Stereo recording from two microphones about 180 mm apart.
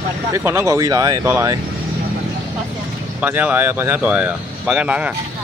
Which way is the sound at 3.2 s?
10° right (ahead or behind).